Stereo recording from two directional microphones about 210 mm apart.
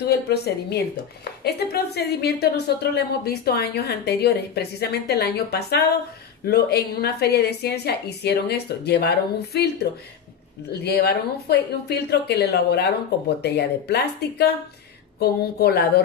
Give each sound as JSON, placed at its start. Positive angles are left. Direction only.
{"t": 0.0, "sound": "a woman's voice", "side_deg": 50}
{"t": 10.7, "sound": "a woman's voice", "side_deg": 50}